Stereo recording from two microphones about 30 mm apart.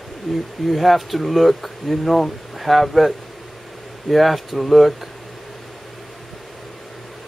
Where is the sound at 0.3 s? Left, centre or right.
Centre.